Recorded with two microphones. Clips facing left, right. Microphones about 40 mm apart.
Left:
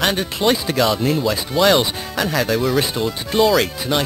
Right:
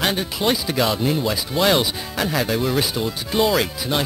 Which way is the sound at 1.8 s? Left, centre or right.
Centre.